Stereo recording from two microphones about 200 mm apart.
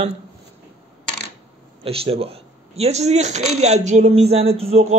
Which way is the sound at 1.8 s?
30° right (ahead or behind).